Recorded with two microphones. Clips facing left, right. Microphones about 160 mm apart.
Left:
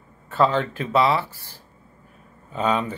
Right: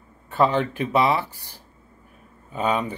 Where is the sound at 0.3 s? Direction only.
15° right (ahead or behind).